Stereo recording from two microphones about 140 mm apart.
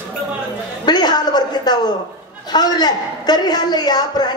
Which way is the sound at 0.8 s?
30° left (ahead or behind).